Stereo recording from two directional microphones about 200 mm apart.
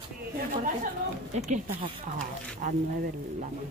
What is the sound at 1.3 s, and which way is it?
Speech, 35° right (ahead or behind).